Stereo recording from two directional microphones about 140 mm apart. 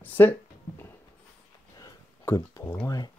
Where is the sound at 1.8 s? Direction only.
25° left (ahead or behind).